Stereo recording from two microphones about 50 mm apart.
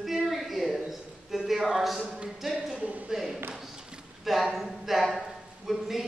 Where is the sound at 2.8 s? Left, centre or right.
Right.